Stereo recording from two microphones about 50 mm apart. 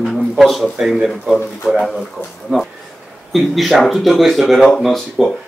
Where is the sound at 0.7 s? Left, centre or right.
Centre.